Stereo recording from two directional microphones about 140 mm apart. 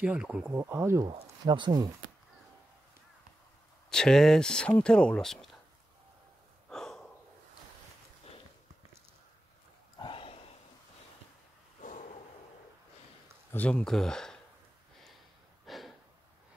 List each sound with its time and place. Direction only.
0.0 s speech: 5° right (ahead or behind)
1.0 s speech: 45° right (ahead or behind)
1.4 s speech: 30° right (ahead or behind)
3.9 s speech: 5° left (ahead or behind)
6.7 s gasp: 5° left (ahead or behind)
9.9 s a sound: 35° left (ahead or behind)
11.8 s snort: 65° left (ahead or behind)
13.5 s speech: 10° left (ahead or behind)
15.6 s snort: centre (ahead or behind)